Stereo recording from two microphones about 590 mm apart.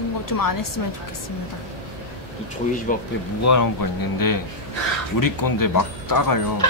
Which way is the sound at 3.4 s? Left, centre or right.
Left.